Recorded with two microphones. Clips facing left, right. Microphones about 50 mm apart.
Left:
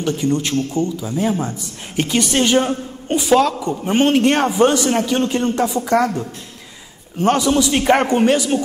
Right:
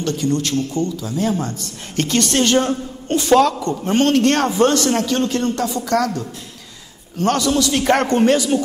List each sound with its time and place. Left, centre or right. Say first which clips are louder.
0.0 s a man's voice: left 1 dB; centre